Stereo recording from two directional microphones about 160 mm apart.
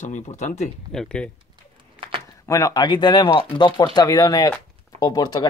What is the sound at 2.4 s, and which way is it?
Speech, 20° left (ahead or behind).